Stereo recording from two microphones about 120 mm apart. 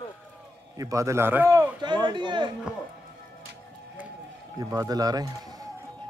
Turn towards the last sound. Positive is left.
turn(degrees=-30)  # may be behind; listen again after turning